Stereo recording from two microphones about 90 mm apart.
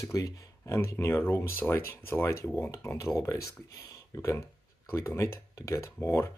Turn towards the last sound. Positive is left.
turn(degrees=30)  # may be behind; listen again after turning